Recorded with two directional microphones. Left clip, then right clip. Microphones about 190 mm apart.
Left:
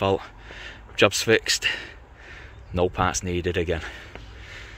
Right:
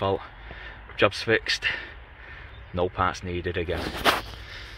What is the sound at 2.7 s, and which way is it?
Speech, 15° left (ahead or behind).